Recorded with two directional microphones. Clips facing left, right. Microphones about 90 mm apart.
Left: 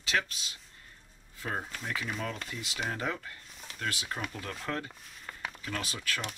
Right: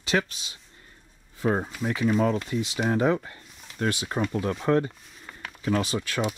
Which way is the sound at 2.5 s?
20° right (ahead or behind).